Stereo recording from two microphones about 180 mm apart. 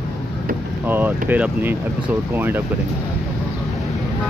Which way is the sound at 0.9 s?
10° right (ahead or behind).